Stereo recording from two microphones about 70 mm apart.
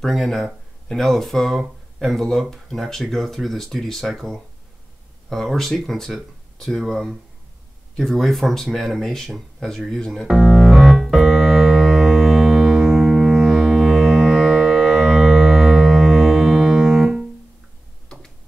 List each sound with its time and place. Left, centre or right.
0.0 s speech: centre
10.2 s music: centre
18.0 s tick-tock: centre